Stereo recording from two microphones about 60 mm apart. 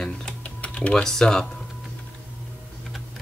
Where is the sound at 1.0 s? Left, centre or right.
Centre.